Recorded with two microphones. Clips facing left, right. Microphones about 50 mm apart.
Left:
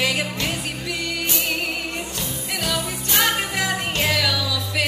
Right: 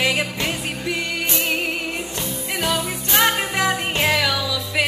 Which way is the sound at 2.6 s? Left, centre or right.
Right.